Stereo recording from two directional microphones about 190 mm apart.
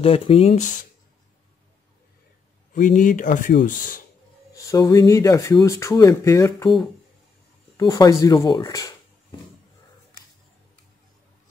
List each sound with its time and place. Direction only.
0.0 s speech: 30° left (ahead or behind)
2.7 s speech: 40° left (ahead or behind)
4.6 s speech: 20° left (ahead or behind)
7.7 s speech: 20° left (ahead or behind)